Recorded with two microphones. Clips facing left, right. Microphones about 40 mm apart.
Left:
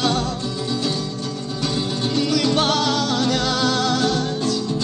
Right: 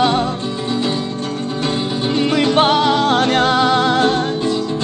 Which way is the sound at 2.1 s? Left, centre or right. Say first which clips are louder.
Right 5 dB; right.